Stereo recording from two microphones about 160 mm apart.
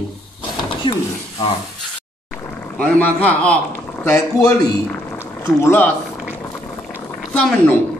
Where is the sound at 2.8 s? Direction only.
10° left (ahead or behind).